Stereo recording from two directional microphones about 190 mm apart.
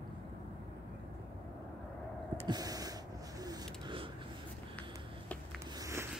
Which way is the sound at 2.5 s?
20° right (ahead or behind).